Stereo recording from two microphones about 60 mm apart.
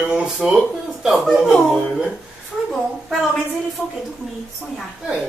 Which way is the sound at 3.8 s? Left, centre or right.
Left.